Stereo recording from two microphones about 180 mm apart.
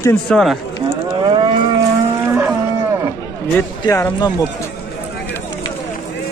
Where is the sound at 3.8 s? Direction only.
20° left (ahead or behind).